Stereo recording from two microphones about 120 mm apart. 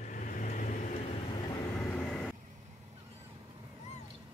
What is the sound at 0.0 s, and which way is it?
Vehicle, 90° left.